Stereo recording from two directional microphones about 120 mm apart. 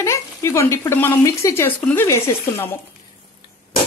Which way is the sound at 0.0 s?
25° left (ahead or behind).